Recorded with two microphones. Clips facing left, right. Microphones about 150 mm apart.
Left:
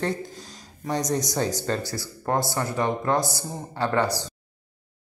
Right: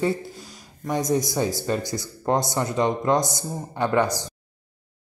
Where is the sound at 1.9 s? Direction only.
20° right (ahead or behind).